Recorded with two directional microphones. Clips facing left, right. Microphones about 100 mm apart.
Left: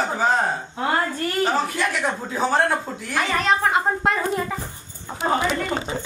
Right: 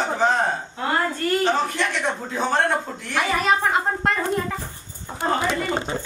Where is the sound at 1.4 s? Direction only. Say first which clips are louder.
Even; 5° left (ahead or behind).